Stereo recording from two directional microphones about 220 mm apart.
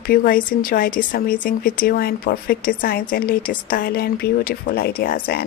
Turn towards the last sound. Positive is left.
turn(degrees=45)  # may be behind; listen again after turning